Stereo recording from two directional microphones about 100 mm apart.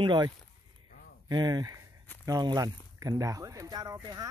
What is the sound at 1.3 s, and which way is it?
Speech, 45° right (ahead or behind).